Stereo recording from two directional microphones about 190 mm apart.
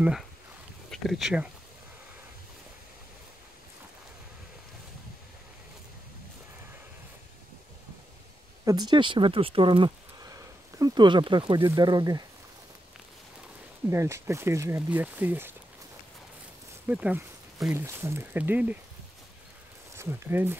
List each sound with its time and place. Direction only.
0.8 s speech: centre (ahead or behind)
8.6 s speech: 20° right (ahead or behind)
13.8 s speech: 15° right (ahead or behind)
16.8 s speech: 10° right (ahead or behind)
20.0 s speech: 10° right (ahead or behind)